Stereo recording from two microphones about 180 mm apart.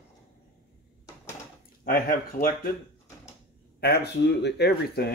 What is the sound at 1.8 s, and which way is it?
Speech, 55° left (ahead or behind).